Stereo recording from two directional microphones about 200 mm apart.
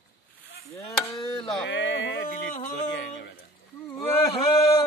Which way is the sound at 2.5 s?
40° left (ahead or behind).